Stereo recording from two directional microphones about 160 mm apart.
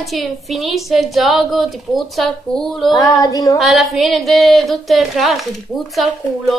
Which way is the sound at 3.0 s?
20° left (ahead or behind).